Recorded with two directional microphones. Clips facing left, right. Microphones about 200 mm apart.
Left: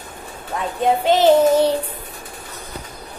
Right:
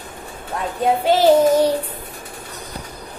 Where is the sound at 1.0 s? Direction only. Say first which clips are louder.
Even; 10° right (ahead or behind).